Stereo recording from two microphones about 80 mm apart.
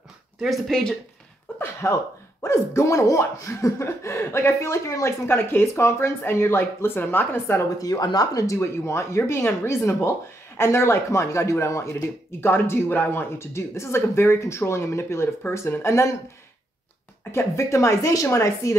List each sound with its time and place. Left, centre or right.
0.4 s speech: centre
1.6 s a sound: left
2.4 s speech: left
7.8 s speech: left
8.5 s speech: left
17.2 s speech: left